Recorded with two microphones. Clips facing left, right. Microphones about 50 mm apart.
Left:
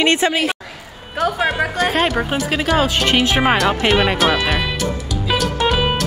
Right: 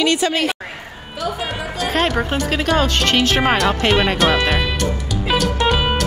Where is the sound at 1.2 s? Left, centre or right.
Left.